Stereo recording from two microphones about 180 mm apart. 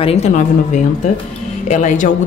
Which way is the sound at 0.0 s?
35° left (ahead or behind).